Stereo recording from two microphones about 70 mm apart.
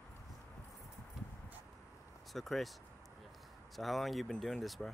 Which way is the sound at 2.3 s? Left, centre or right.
Centre.